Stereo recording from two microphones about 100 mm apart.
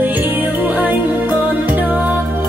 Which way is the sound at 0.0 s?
20° right (ahead or behind).